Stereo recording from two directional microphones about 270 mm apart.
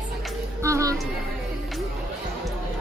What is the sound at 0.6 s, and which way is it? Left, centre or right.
Music, centre.